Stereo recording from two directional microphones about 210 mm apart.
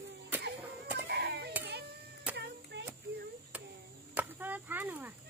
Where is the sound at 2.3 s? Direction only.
5° right (ahead or behind).